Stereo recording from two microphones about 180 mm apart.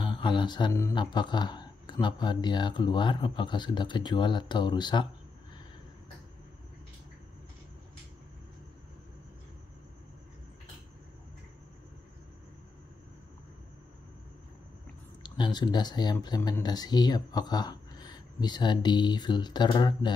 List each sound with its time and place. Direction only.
0.0 s speech: 25° left (ahead or behind)
15.2 s speech: 25° left (ahead or behind)